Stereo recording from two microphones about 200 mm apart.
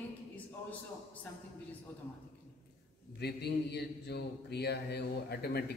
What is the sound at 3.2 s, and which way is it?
Mantra, 55° left (ahead or behind).